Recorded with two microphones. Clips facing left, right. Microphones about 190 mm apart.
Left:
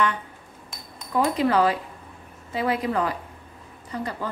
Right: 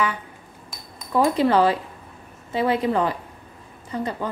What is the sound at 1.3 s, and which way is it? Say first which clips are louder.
A woman's voice: right 1 dB; 30° right (ahead or behind).